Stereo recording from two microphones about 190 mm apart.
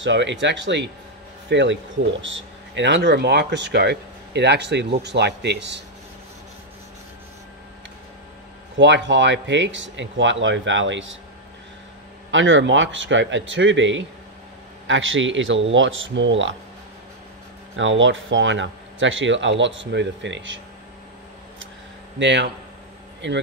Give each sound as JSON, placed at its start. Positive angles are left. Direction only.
{"t": 0.0, "sound": "speech", "side_deg": -70}
{"t": 8.7, "sound": "speech", "side_deg": -70}
{"t": 12.3, "sound": "speech", "side_deg": -85}
{"t": 17.7, "sound": "speech", "side_deg": -80}
{"t": 22.2, "sound": "speech", "side_deg": -65}